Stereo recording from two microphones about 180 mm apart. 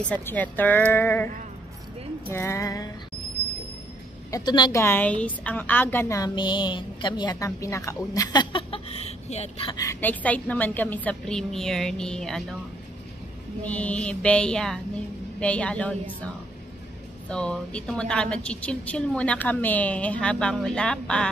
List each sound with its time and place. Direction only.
0.1 s a woman's voice: 10° left (ahead or behind)
2.3 s a woman's voice: 15° left (ahead or behind)
4.3 s a woman's voice: 25° left (ahead or behind)
4.8 s a woman's voice: 10° left (ahead or behind); by 9.8 s 35° left (ahead or behind)
9.8 s a woman's voice: 15° left (ahead or behind)
13.7 s a woman's voice: 5° left (ahead or behind)
17.3 s a woman's voice: 5° left (ahead or behind)